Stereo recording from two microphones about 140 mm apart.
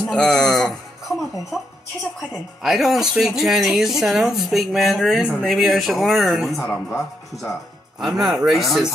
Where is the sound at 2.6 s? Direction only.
Centre (ahead or behind).